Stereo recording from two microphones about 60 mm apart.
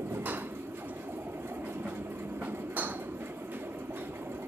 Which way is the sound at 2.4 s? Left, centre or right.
Right.